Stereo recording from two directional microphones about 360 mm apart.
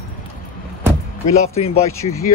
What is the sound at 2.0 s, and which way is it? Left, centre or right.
Speech, centre.